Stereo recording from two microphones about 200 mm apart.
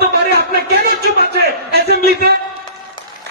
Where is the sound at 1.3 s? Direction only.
55° right (ahead or behind).